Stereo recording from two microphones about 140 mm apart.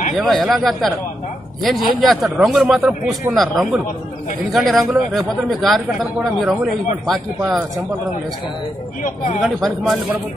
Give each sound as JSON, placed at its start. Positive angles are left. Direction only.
{"t": 0.1, "sound": "speech", "side_deg": 0}
{"t": 9.0, "sound": "speech", "side_deg": 60}
{"t": 9.4, "sound": "speech", "side_deg": 0}